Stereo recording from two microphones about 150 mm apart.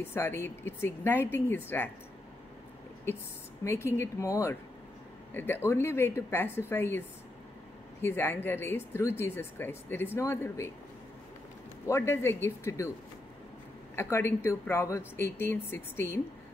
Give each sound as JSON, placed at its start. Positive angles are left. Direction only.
{"t": 0.0, "sound": "speech", "side_deg": 15}
{"t": 3.6, "sound": "speech", "side_deg": 15}
{"t": 8.0, "sound": "speech", "side_deg": 15}
{"t": 11.9, "sound": "speech", "side_deg": 15}
{"t": 13.9, "sound": "speech", "side_deg": 15}